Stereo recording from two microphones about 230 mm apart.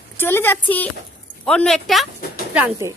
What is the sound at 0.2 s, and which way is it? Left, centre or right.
A woman's voice, centre.